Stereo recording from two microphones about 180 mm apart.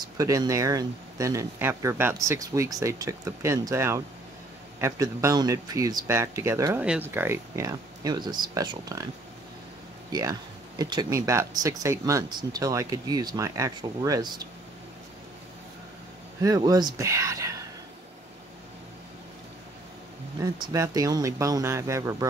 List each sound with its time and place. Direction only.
0.0 s speech: 20° right (ahead or behind)
10.1 s speech: 20° right (ahead or behind)
16.4 s speech: 20° right (ahead or behind)
20.3 s speech: 25° right (ahead or behind)